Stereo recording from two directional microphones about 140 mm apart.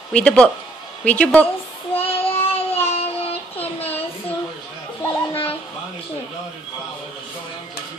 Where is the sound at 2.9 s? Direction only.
45° left (ahead or behind).